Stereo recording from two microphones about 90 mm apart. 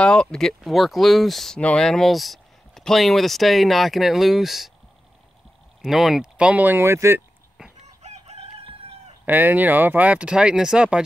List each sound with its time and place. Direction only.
0.0 s speech: 10° left (ahead or behind)
5.8 s speech: 5° right (ahead or behind)
6.8 s speech: 30° right (ahead or behind)
9.2 s speech: 20° right (ahead or behind)